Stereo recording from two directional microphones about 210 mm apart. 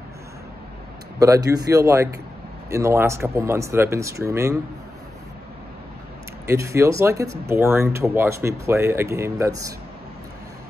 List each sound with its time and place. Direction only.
1.2 s speech: 15° right (ahead or behind)
6.4 s speech: 15° right (ahead or behind)